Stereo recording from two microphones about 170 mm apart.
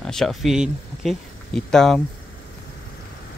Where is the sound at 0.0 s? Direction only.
5° left (ahead or behind).